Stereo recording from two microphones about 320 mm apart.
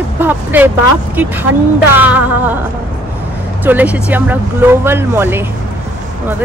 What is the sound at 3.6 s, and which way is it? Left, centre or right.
Speech, centre.